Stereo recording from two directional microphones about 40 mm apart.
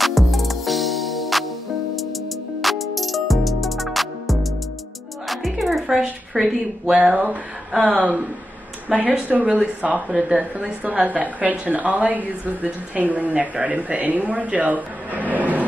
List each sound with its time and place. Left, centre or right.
0.0 s music: centre
2.6 s music: centre
7.9 s a woman's voice: right